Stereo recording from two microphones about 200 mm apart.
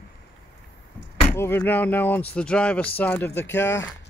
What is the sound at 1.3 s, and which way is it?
Speech, 10° left (ahead or behind).